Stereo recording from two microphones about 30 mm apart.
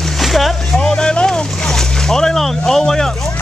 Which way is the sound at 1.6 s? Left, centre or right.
Centre.